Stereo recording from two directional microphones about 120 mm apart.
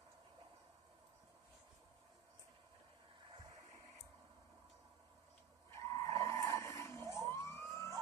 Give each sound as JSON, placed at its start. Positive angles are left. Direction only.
{"t": 5.7, "sound": "vehicle", "side_deg": 25}